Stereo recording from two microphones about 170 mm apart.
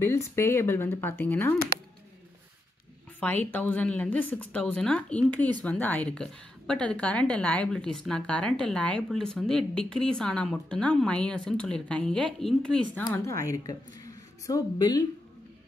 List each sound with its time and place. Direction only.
0.0 s speech: 15° left (ahead or behind)
3.2 s a woman's voice: 10° left (ahead or behind)
13.1 s a woman's voice: 15° left (ahead or behind)